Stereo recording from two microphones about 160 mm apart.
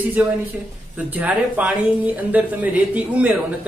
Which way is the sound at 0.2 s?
10° right (ahead or behind).